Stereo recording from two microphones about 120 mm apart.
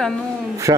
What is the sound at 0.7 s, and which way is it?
Speech, 30° right (ahead or behind).